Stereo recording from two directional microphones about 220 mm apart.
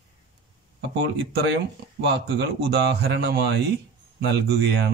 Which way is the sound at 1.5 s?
50° right (ahead or behind).